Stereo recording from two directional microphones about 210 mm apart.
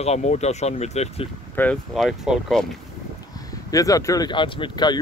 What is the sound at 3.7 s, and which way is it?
Speech, 15° left (ahead or behind).